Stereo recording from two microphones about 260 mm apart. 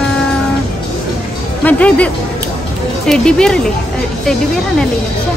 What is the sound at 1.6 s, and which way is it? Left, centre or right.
A woman's voice, centre.